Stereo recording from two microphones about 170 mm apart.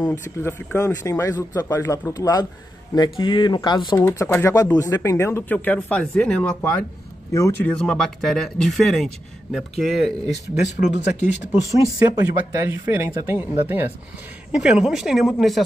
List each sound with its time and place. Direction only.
0.0 s speech: 15° left (ahead or behind)
4.0 s speech: 15° left (ahead or behind)
7.8 s speech: 5° left (ahead or behind)
10.2 s speech: 45° left (ahead or behind)
12.2 s speech: 15° right (ahead or behind); by 15.6 s centre (ahead or behind)